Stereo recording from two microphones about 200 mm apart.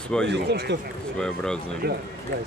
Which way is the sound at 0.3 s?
55° right (ahead or behind).